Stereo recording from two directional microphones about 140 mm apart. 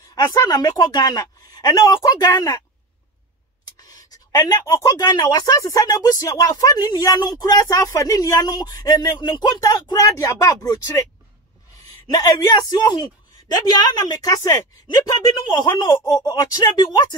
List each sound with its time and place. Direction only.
0.1 s speech: 30° left (ahead or behind)
3.8 s speech: 25° left (ahead or behind)
12.1 s speech: 25° left (ahead or behind)